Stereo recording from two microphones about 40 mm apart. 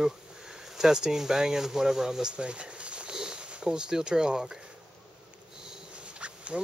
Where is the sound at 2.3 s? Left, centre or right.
Right.